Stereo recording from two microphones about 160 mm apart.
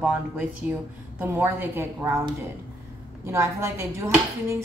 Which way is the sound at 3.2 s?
15° right (ahead or behind).